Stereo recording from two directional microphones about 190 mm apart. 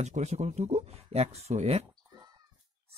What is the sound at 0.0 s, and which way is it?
Speech, 35° right (ahead or behind).